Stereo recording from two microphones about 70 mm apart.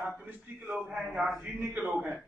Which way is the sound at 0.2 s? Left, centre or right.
Centre.